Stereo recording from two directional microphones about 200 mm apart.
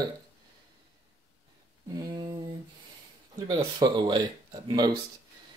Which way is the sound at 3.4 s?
20° right (ahead or behind).